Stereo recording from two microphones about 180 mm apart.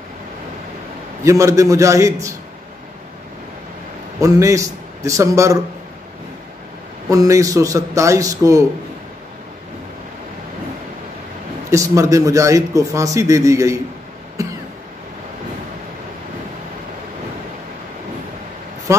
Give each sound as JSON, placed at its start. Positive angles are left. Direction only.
{"t": 1.2, "sound": "a man's voice", "side_deg": -15}
{"t": 4.2, "sound": "a man's voice", "side_deg": -15}
{"t": 7.1, "sound": "a man's voice", "side_deg": -20}
{"t": 11.7, "sound": "a man's voice", "side_deg": -15}
{"t": 18.9, "sound": "a man's voice", "side_deg": -15}